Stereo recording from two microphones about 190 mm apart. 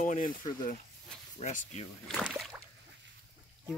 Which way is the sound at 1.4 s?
40° left (ahead or behind).